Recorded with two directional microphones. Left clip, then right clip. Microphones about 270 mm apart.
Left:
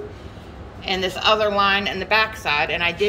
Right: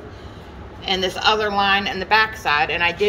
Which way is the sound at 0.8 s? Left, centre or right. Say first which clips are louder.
Right 1 dB; centre.